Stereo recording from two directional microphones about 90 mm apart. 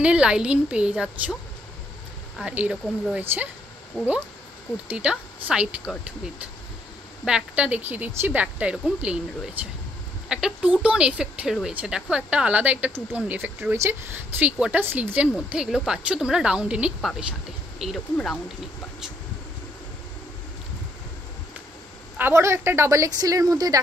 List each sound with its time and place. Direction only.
0.0 s a woman's voice: 10° right (ahead or behind)
2.4 s a woman's voice: 15° right (ahead or behind)
3.9 s speech: 10° left (ahead or behind)
4.8 s a woman's voice: 10° right (ahead or behind)
7.2 s a woman's voice: 10° right (ahead or behind)
10.2 s a woman's voice: 10° right (ahead or behind)
22.2 s a woman's voice: 30° right (ahead or behind)